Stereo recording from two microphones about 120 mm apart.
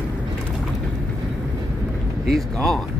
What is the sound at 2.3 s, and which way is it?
Speech, 5° left (ahead or behind).